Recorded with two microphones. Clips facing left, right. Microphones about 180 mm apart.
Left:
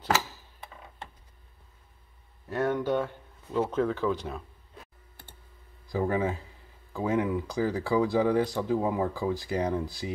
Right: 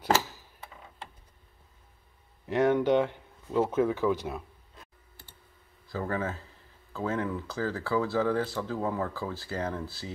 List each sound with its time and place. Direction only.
2.4 s speech: 15° right (ahead or behind)
5.9 s speech: 15° left (ahead or behind)